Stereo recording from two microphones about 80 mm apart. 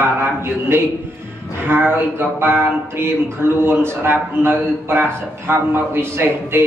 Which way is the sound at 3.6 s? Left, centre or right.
Right.